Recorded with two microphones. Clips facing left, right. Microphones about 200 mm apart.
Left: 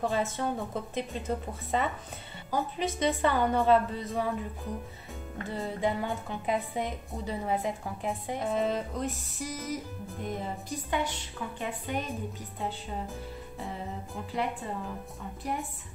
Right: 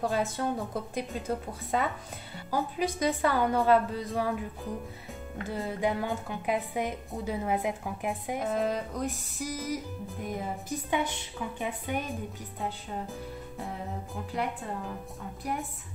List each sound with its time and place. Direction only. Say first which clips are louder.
0.0 s speech: even; centre (ahead or behind)
5.4 s a woman's voice: even; centre (ahead or behind)